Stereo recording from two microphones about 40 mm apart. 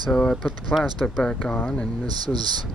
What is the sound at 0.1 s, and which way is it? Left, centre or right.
Speech, left.